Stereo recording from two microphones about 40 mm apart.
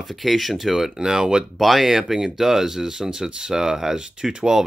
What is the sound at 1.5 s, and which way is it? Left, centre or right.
Speech, centre.